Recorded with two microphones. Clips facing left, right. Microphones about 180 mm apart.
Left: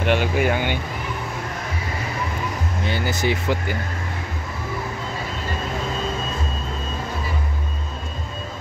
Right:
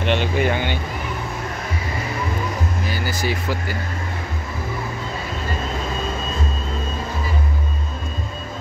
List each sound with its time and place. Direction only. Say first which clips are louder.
0.0 s speech: even; 10° left (ahead or behind)
2.8 s speech: left 2 dB; 25° left (ahead or behind)